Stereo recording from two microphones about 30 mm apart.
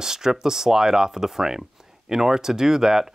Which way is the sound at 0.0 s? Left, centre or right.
Centre.